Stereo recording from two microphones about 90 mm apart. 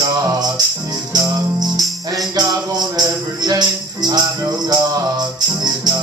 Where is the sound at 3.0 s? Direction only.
50° right (ahead or behind).